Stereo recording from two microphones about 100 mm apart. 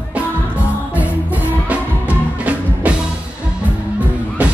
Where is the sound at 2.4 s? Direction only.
15° right (ahead or behind).